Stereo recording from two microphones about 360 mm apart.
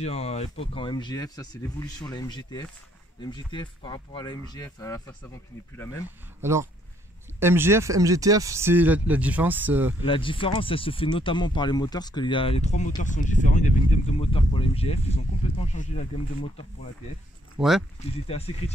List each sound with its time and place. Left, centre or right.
0.0 s speech: centre
6.4 s speech: centre
10.0 s speech: centre
17.6 s speech: centre
18.2 s speech: centre